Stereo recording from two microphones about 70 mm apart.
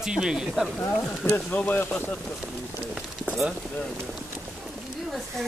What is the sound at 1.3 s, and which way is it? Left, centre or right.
Speech, left.